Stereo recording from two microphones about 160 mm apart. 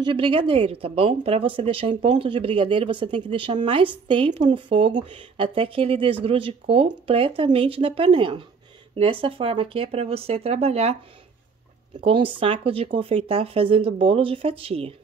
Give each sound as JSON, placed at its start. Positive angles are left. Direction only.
{"t": 0.0, "sound": "speech", "side_deg": -30}
{"t": 12.0, "sound": "speech", "side_deg": -35}